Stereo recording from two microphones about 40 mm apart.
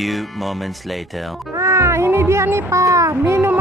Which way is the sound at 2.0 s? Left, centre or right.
Right.